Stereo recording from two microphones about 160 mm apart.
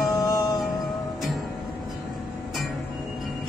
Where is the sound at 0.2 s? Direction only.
20° left (ahead or behind).